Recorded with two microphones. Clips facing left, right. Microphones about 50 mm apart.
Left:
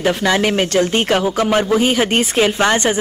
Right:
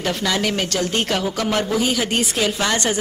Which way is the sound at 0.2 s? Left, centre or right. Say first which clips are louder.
Left 6 dB; left.